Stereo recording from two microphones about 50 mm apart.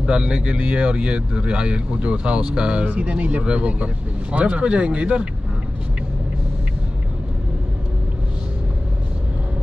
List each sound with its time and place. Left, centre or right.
0.0 s speech: centre